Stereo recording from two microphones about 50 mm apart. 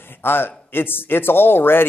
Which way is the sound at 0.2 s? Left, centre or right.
Left.